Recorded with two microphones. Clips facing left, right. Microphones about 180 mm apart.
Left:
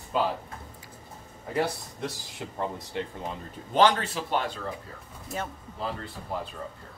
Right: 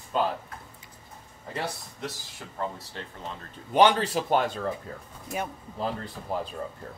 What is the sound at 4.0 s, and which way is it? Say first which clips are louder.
Speech: right 5 dB; 40° right (ahead or behind).